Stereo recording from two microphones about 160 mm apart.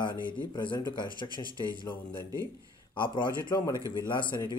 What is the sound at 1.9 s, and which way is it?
Speech, 15° left (ahead or behind).